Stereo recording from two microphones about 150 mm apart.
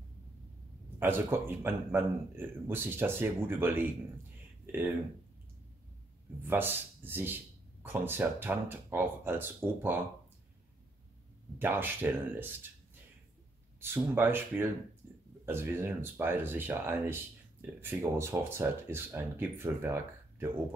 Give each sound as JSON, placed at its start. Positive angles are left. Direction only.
{"t": 0.9, "sound": "speech", "side_deg": -15}
{"t": 6.4, "sound": "speech", "side_deg": -15}
{"t": 11.5, "sound": "speech", "side_deg": -15}
{"t": 13.7, "sound": "speech", "side_deg": -15}